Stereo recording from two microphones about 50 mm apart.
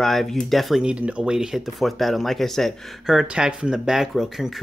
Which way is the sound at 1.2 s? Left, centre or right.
Centre.